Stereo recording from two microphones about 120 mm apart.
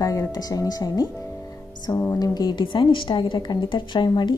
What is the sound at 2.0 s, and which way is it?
A woman's voice, 30° left (ahead or behind).